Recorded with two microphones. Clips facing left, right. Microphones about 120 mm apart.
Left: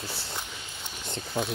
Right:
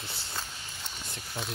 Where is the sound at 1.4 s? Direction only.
50° left (ahead or behind).